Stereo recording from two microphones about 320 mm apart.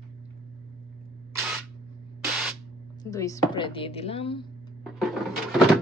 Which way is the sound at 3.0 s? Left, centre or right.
Centre.